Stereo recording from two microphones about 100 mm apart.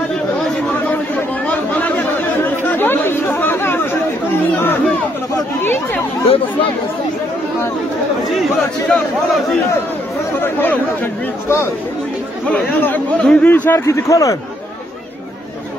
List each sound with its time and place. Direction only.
0.8 s chatter: 15° left (ahead or behind)
5.6 s speech: 20° left (ahead or behind)
6.2 s speech: 70° left (ahead or behind)
10.4 s speech: 20° left (ahead or behind)
12.4 s speech: 15° left (ahead or behind)
13.8 s speech: 30° left (ahead or behind)